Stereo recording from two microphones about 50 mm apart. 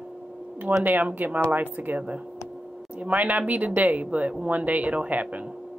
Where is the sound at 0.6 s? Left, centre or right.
Right.